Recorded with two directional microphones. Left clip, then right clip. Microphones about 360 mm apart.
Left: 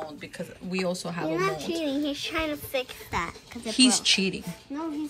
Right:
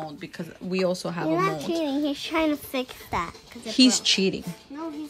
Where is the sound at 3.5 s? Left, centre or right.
Centre.